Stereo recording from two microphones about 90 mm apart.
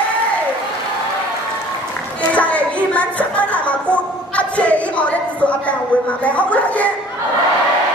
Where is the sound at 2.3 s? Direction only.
15° left (ahead or behind).